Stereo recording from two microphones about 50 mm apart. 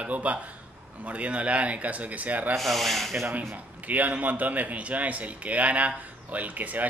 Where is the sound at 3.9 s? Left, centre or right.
Right.